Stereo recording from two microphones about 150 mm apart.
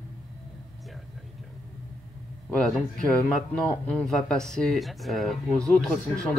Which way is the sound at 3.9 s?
5° left (ahead or behind).